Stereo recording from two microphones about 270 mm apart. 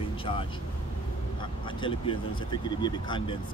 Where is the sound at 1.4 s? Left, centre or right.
Centre.